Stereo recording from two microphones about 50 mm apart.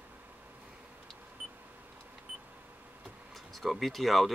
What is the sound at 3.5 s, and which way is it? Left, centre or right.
Speech, centre.